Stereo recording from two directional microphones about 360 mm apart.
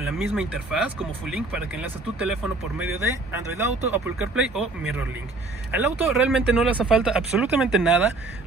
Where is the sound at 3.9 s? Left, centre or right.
Centre.